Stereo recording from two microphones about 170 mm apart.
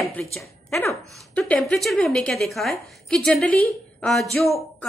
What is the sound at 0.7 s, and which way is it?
Speech, 15° left (ahead or behind).